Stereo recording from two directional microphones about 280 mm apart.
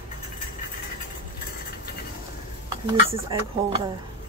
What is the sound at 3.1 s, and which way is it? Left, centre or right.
Speech, centre.